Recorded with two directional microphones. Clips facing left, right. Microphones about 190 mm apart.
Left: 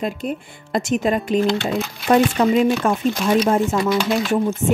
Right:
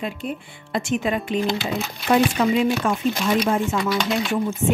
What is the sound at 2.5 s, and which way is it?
A woman's voice, 45° left (ahead or behind).